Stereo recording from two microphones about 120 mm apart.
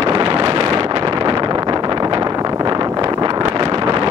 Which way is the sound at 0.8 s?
40° right (ahead or behind).